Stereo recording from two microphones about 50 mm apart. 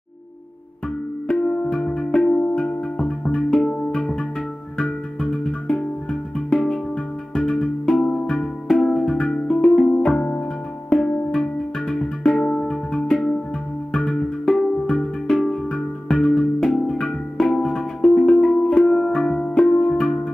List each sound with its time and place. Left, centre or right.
1.2 s music: left
9.8 s music: left
11.0 s music: centre